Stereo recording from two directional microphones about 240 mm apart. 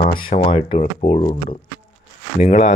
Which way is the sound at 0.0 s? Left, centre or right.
Left.